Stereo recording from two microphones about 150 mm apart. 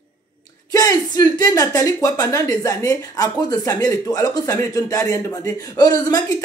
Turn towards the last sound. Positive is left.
turn(degrees=25)  # may be behind; listen again after turning